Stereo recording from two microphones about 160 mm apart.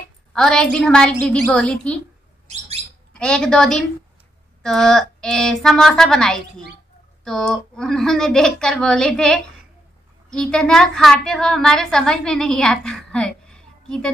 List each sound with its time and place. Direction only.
0.3 s a woman's voice: 5° left (ahead or behind)
2.4 s bird: 45° right (ahead or behind)
3.2 s speech: 5° left (ahead or behind)